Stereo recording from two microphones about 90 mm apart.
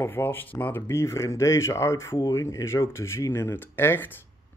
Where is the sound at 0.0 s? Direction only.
25° left (ahead or behind).